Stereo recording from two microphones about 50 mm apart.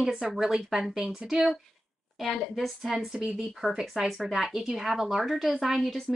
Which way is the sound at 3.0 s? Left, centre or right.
Centre.